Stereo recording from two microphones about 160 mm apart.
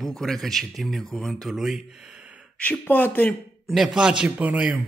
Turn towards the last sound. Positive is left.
turn(degrees=-10)  # may be behind; listen again after turning